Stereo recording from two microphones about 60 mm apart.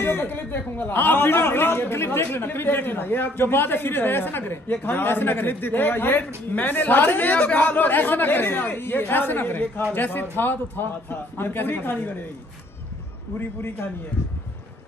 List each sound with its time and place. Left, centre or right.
0.0 s a man's voice: left
13.6 s a man's voice: left